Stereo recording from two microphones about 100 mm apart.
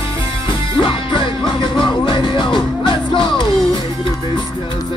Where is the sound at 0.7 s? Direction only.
55° left (ahead or behind).